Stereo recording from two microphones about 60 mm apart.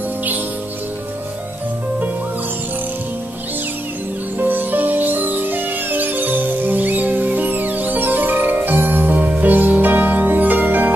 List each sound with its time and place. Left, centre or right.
4.4 s music: right